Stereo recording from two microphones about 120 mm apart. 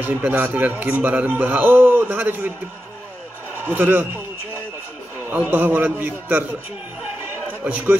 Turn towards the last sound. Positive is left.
turn(degrees=-15)  # may be behind; listen again after turning